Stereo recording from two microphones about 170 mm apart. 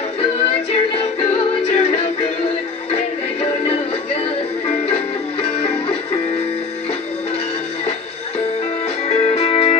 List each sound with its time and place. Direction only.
0.2 s music: 35° left (ahead or behind)
3.6 s music: 35° left (ahead or behind)
9.1 s music: 35° left (ahead or behind)